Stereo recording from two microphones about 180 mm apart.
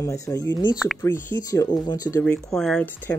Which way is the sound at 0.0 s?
20° left (ahead or behind).